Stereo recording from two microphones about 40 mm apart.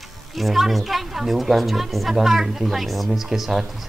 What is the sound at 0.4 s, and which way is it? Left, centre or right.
Speech, centre.